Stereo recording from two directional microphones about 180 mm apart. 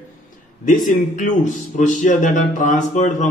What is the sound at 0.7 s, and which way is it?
Speech, 45° left (ahead or behind).